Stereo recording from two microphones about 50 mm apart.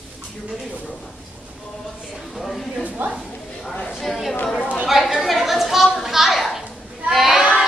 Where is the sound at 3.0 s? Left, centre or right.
Right.